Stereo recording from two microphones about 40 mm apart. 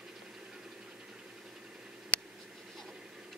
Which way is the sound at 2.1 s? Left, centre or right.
Left.